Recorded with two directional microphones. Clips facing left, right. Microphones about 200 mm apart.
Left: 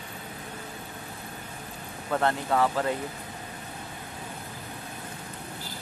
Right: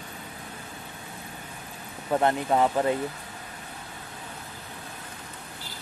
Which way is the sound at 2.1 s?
20° right (ahead or behind).